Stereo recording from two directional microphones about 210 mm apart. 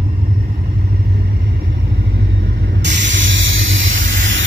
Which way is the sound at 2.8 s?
55° right (ahead or behind).